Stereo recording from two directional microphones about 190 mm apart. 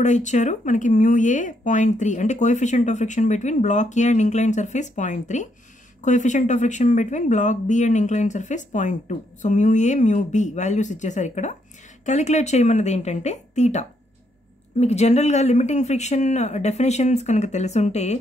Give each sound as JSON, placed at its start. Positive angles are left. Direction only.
{"t": 0.0, "sound": "speech", "side_deg": 40}